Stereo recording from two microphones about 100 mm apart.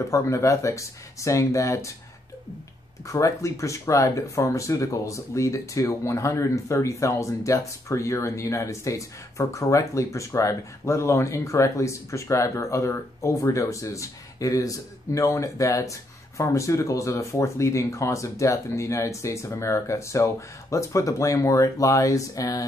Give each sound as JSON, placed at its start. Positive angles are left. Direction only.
{"t": 0.1, "sound": "speech", "side_deg": 30}
{"t": 3.1, "sound": "speech", "side_deg": 30}